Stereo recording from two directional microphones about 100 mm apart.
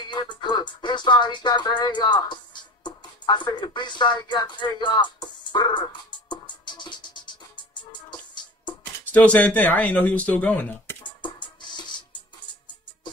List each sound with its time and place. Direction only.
0.1 s music: 50° left (ahead or behind)
9.0 s speech: 15° left (ahead or behind)
11.1 s music: 50° left (ahead or behind)